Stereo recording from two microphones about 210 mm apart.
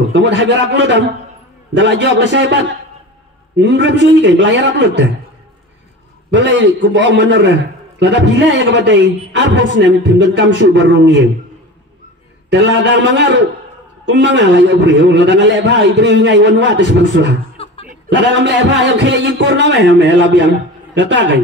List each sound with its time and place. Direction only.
0.1 s a man's voice: 60° right (ahead or behind)
6.3 s a man's voice: 60° right (ahead or behind)
12.4 s a man's voice: 55° right (ahead or behind)
17.6 s chuckle: 25° left (ahead or behind)
18.1 s a man's voice: 55° right (ahead or behind)